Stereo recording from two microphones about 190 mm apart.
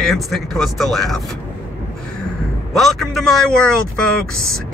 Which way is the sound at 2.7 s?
Centre (ahead or behind).